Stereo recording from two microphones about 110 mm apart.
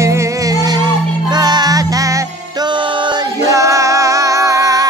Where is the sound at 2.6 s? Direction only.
45° right (ahead or behind).